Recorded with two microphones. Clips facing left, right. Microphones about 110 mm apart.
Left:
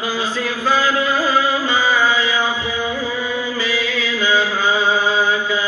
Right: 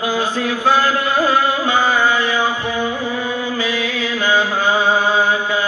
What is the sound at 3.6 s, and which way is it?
Mantra, 55° right (ahead or behind).